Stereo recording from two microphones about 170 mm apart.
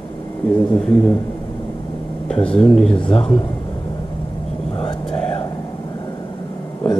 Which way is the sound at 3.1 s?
35° left (ahead or behind).